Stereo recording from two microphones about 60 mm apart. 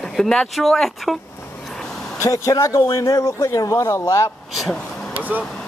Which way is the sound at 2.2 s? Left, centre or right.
Left.